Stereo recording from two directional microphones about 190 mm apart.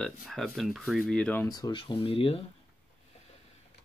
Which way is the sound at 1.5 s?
25° left (ahead or behind).